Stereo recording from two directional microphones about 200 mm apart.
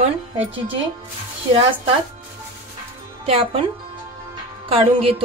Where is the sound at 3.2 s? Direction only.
30° right (ahead or behind).